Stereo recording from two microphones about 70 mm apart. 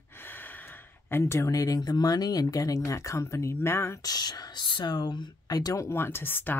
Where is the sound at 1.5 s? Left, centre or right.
Left.